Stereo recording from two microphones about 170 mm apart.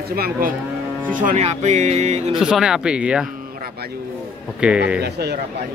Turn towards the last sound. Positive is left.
turn(degrees=-75)  # may be behind; listen again after turning